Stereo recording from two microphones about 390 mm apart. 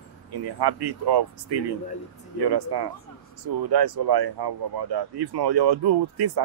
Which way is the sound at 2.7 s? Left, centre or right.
Right.